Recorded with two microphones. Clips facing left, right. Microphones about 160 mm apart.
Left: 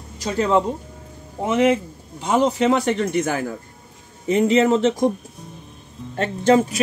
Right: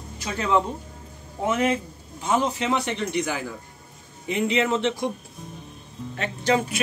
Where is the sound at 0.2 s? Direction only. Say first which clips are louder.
Left 5 dB; 35° left (ahead or behind).